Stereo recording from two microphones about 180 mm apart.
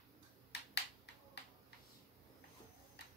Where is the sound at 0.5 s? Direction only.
70° left (ahead or behind).